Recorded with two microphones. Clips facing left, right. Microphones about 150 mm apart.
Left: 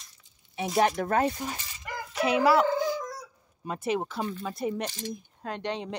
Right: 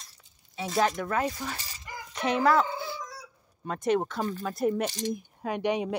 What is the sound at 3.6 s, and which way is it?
Speech, 5° left (ahead or behind).